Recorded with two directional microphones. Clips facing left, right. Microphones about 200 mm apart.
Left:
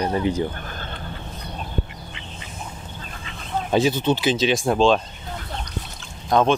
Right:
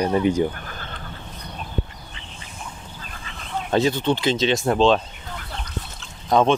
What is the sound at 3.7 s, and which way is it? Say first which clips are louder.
Speech: even; 5° left (ahead or behind).